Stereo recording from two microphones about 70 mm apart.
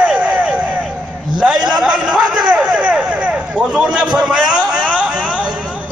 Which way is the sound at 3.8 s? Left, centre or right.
Centre.